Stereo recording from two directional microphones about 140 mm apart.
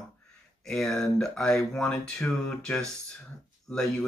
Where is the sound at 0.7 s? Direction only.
5° left (ahead or behind).